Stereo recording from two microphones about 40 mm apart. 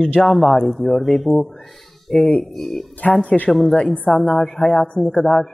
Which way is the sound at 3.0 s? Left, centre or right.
Left.